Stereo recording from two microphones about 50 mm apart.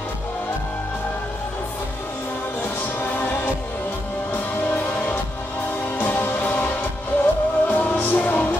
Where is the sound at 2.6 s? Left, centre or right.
Left.